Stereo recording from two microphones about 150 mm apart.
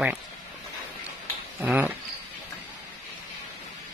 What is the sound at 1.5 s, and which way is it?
Speech, 5° right (ahead or behind).